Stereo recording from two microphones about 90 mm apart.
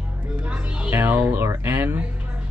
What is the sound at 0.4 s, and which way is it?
Music, 15° right (ahead or behind).